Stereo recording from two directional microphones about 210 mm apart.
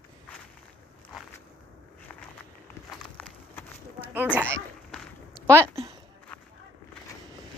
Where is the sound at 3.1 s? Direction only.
10° left (ahead or behind).